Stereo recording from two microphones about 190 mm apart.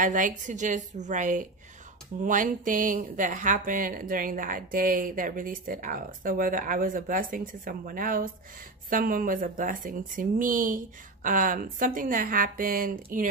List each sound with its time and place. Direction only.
0.0 s a woman's voice: 40° right (ahead or behind)